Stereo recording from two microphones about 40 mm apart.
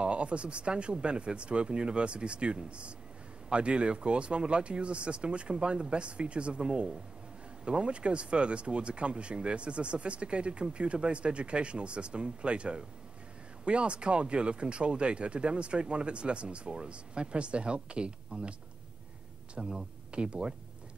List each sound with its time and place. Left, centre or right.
0.0 s speech: right
19.5 s speech: right